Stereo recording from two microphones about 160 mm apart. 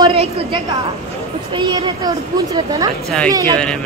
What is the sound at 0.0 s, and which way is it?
A woman's voice, 35° right (ahead or behind).